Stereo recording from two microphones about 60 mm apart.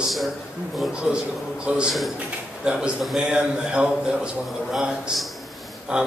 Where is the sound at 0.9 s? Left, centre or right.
Centre.